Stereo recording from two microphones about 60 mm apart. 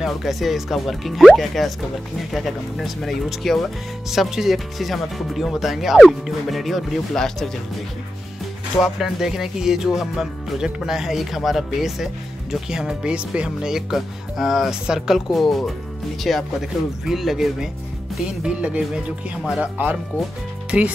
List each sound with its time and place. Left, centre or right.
0.0 s speech: centre
8.8 s speech: centre
18.2 s speech: centre
19.6 s speech: right
20.7 s speech: centre